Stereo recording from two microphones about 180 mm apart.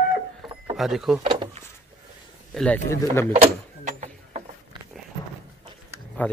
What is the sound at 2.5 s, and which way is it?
Speech, 5° left (ahead or behind).